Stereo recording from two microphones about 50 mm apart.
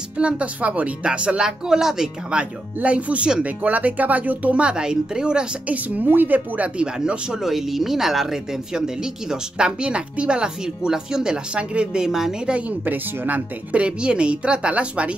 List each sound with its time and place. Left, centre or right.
0.2 s speech: right
2.3 s speech: right
5.7 s speech: right
6.8 s speech: centre
7.3 s speech: centre
12.5 s speech: right
13.7 s speech: right